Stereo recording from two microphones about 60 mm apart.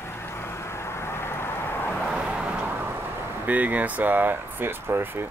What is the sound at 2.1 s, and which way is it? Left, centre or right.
Vehicle, centre.